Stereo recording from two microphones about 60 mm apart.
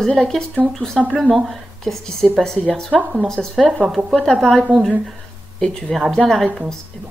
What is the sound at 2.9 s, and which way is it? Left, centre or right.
Speech, centre.